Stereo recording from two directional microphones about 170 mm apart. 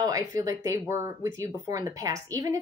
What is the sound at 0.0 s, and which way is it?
Speech, 20° right (ahead or behind).